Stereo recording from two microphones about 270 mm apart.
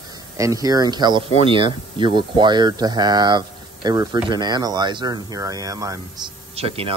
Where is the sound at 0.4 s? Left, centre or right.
Centre.